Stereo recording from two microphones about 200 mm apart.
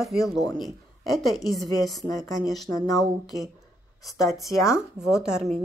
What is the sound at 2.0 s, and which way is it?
Speech, 20° left (ahead or behind).